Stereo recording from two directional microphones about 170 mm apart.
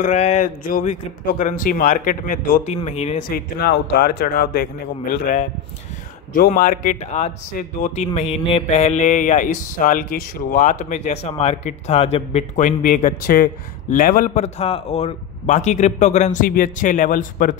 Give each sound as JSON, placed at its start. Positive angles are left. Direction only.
{"t": 0.0, "sound": "speech", "side_deg": 45}
{"t": 3.3, "sound": "speech", "side_deg": 65}